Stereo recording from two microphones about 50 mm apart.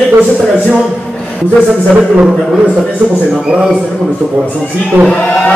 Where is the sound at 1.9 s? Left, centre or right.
Right.